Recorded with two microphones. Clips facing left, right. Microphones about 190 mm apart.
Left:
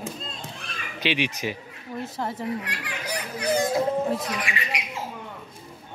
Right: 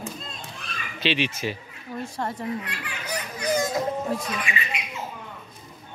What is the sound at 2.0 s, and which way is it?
Speech, 5° left (ahead or behind).